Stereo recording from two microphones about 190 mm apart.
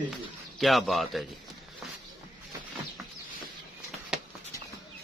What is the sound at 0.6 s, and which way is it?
Speech, centre (ahead or behind).